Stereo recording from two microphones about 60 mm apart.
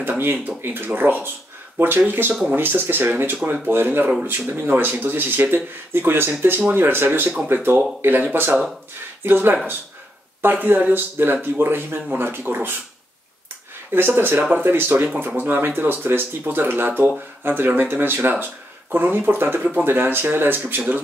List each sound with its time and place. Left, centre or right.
0.0 s a sound: right
0.6 s speech: right
13.9 s speech: right